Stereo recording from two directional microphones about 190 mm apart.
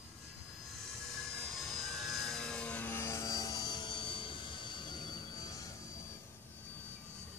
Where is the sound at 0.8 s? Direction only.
Centre (ahead or behind); by 5.7 s 20° left (ahead or behind).